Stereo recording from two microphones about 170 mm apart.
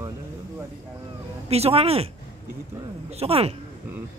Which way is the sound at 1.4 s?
35° right (ahead or behind).